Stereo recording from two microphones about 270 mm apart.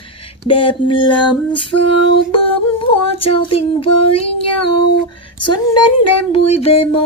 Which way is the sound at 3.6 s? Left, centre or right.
Centre.